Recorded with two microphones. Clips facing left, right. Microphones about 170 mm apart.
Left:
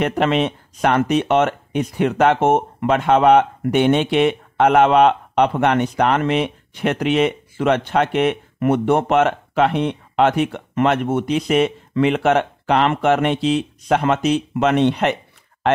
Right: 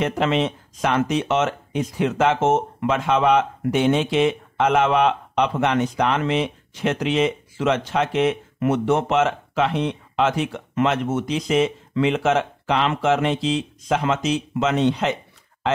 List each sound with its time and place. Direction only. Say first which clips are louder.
0.0 s speech: left 3 dB; 60° left (ahead or behind)